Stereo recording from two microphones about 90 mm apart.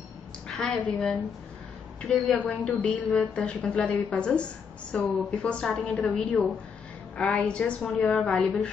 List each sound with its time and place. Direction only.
0.5 s a sound: 5° left (ahead or behind)
0.7 s a woman's voice: 15° left (ahead or behind)
2.0 s a woman's voice: 5° left (ahead or behind)
2.3 s a woman's voice: 15° left (ahead or behind)
6.0 s a woman's voice: 15° left (ahead or behind)